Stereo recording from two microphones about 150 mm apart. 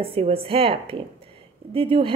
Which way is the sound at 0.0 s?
40° right (ahead or behind).